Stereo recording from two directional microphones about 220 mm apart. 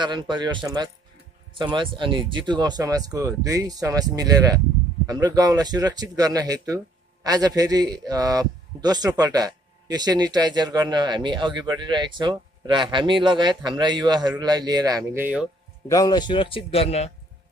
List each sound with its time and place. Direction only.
0.0 s speech: 20° right (ahead or behind)
15.9 s a man's voice: 15° left (ahead or behind)